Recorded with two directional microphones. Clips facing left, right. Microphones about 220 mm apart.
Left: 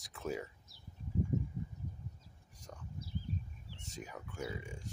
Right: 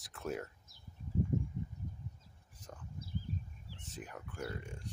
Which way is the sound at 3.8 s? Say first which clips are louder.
Left 1 dB; centre (ahead or behind).